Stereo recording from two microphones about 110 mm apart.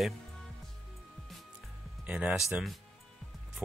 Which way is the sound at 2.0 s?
15° right (ahead or behind).